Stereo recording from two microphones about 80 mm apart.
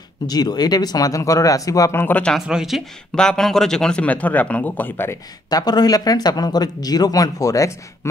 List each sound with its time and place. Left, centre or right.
0.3 s speech: left
2.0 s speech: left
2.3 s speech: centre
3.2 s speech: centre; by 5.2 s left
5.5 s speech: left